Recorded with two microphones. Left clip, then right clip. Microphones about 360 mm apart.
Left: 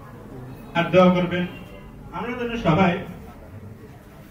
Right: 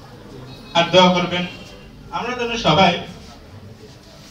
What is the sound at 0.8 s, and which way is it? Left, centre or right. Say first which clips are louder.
A man's voice: right 4 dB; right.